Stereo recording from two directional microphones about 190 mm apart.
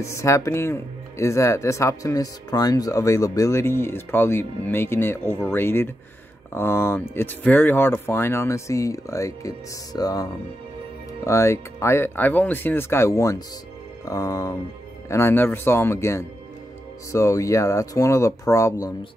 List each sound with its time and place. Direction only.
0.0 s speech: 15° left (ahead or behind)
11.2 s speech: 15° left (ahead or behind)